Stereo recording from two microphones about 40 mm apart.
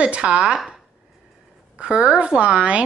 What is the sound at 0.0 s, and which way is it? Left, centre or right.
Speech, right.